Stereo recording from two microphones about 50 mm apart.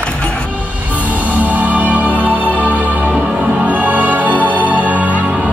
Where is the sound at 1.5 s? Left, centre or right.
Right.